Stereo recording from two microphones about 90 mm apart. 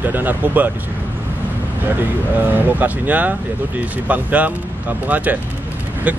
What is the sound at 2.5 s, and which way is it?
Speech, 20° right (ahead or behind).